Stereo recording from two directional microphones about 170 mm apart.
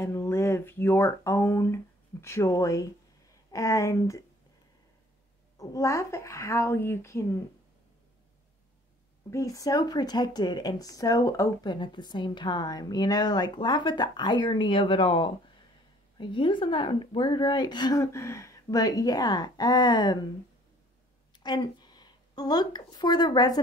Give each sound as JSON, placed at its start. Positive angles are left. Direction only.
{"t": 0.0, "sound": "speech", "side_deg": 15}
{"t": 5.6, "sound": "a woman's voice", "side_deg": 20}
{"t": 9.3, "sound": "speech", "side_deg": 20}
{"t": 21.3, "sound": "a woman's voice", "side_deg": 25}